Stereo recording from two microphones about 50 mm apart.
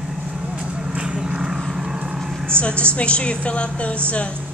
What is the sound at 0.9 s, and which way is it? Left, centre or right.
Vehicle, centre.